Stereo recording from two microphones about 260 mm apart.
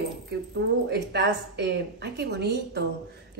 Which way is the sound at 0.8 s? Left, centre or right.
Right.